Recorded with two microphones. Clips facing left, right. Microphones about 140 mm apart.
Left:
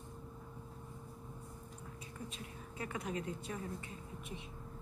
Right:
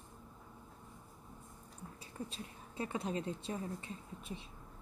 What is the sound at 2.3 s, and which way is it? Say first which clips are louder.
A woman's voice: even; 30° right (ahead or behind).